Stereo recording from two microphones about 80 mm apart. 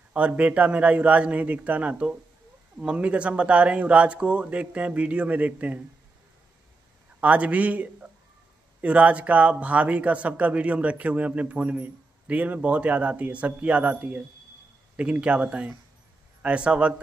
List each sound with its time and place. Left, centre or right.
0.1 s speech: centre
7.2 s speech: centre